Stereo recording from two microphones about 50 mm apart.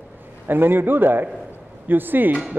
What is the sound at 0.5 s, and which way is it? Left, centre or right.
A man's voice, right.